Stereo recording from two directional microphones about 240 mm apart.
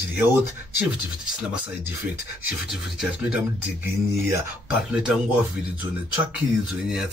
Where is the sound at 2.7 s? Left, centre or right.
Centre.